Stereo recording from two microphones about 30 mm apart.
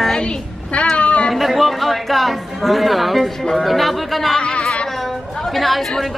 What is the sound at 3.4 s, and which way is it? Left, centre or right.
Speech, centre.